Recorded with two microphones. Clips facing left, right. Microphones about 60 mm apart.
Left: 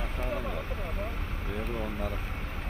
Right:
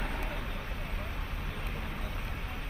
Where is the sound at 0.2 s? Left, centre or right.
Left.